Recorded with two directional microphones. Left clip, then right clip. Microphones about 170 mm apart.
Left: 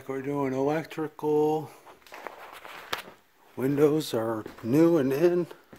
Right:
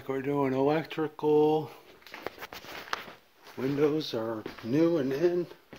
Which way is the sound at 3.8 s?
65° left (ahead or behind).